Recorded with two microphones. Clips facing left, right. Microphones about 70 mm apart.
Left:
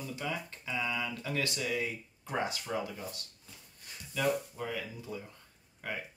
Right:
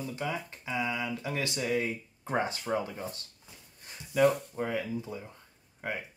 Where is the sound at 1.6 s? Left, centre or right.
Right.